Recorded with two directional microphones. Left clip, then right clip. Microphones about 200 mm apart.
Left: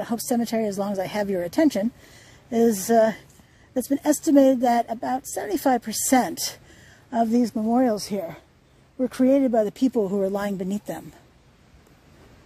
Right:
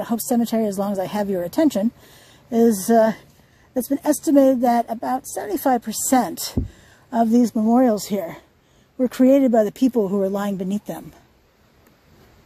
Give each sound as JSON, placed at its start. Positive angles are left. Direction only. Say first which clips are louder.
{"t": 0.0, "sound": "a woman's voice", "louder": "right 3 dB", "side_deg": -10}